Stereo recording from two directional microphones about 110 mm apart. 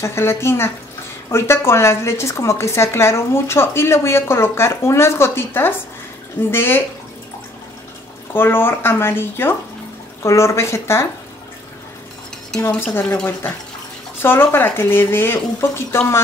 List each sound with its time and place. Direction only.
0.0 s a woman's voice: 25° left (ahead or behind)
8.3 s a woman's voice: 20° left (ahead or behind)
12.6 s a woman's voice: 20° left (ahead or behind)